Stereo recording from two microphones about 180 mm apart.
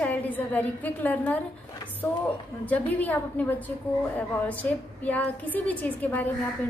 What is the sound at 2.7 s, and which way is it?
Speech, 10° left (ahead or behind).